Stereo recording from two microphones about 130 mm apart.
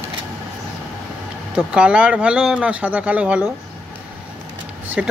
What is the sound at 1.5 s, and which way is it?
Speech, 5° right (ahead or behind).